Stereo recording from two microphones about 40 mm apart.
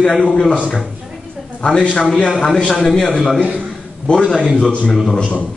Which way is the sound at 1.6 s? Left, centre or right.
Left.